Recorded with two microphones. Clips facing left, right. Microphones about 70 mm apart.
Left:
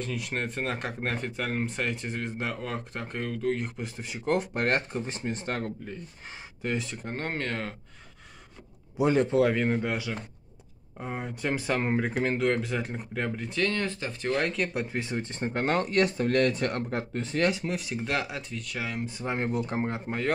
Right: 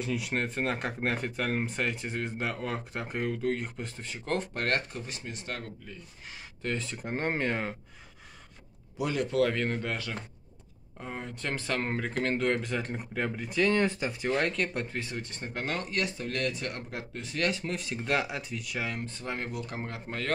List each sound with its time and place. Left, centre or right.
0.0 s speech: centre; by 5.9 s left
6.6 s speech: centre
7.1 s speech: centre
8.9 s speech: left
9.5 s speech: centre
13.7 s speech: centre
15.0 s speech: left
17.5 s speech: centre
17.7 s speech: centre
19.0 s speech: centre